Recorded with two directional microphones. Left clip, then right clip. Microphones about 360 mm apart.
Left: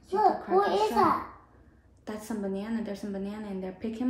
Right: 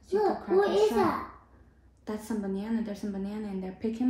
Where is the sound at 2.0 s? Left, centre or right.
Centre.